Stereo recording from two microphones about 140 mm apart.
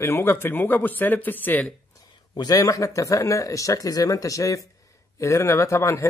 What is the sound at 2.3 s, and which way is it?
Speech, 25° left (ahead or behind).